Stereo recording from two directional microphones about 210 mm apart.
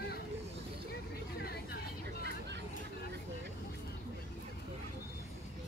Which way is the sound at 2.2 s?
55° right (ahead or behind).